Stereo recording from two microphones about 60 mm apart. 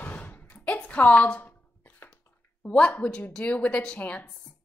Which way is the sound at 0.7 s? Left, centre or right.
Left.